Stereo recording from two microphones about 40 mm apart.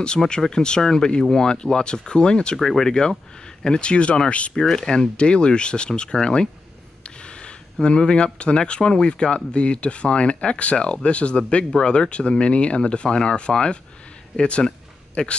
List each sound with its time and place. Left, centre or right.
0.5 s speech: centre
2.5 s speech: centre
2.9 s speech: centre
4.6 s speech: centre
7.0 s a sound: left
7.8 s speech: left